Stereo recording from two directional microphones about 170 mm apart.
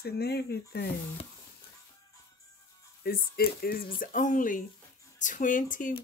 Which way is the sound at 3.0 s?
65° left (ahead or behind).